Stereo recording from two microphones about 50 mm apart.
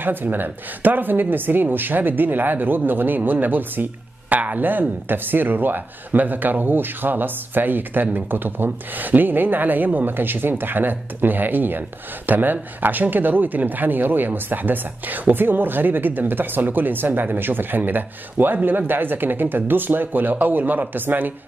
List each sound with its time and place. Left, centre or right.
0.0 s speech: right